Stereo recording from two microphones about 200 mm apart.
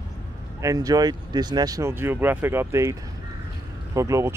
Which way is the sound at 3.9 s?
15° right (ahead or behind).